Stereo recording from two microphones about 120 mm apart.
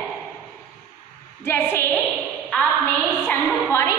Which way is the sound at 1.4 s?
20° left (ahead or behind).